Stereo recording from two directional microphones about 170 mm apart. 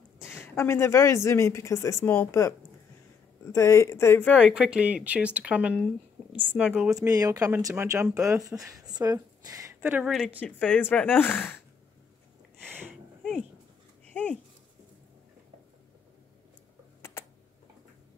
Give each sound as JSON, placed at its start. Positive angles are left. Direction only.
{"t": 0.2, "sound": "speech", "side_deg": 15}
{"t": 3.5, "sound": "speech", "side_deg": 15}
{"t": 4.6, "sound": "speech", "side_deg": -10}
{"t": 7.0, "sound": "speech", "side_deg": -20}
{"t": 9.8, "sound": "a woman's voice", "side_deg": -5}
{"t": 10.4, "sound": "speech", "side_deg": 10}
{"t": 14.1, "sound": "dog", "side_deg": 5}